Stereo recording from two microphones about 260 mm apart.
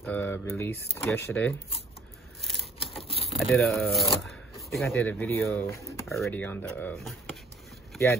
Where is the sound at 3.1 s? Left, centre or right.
Left.